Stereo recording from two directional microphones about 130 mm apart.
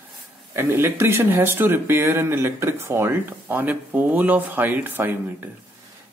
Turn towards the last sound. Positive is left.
turn(degrees=-15)  # may be behind; listen again after turning